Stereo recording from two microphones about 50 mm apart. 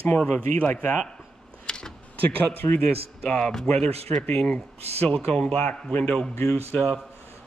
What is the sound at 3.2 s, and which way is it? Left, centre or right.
Speech, centre.